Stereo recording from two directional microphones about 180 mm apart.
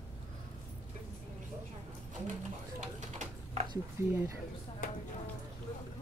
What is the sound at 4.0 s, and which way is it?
Speech, 15° right (ahead or behind).